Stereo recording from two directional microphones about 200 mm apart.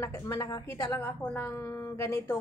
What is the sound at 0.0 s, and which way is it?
A woman's voice, 15° left (ahead or behind).